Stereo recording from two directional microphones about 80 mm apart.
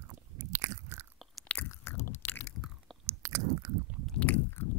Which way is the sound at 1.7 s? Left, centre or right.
Left.